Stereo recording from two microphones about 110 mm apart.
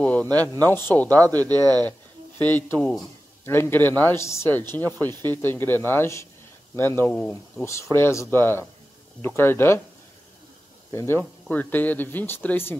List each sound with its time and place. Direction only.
0.0 s speech: 15° left (ahead or behind)
1.5 s speech: 35° right (ahead or behind)
1.9 s speech: 15° left (ahead or behind)
10.9 s speech: 25° left (ahead or behind)